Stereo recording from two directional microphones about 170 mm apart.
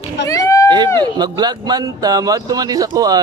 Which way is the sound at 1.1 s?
25° right (ahead or behind).